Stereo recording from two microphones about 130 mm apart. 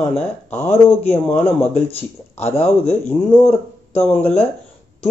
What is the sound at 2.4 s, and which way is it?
Speech, 55° left (ahead or behind).